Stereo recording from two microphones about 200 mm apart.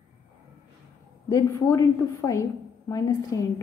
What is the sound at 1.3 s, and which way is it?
Speech, 15° left (ahead or behind).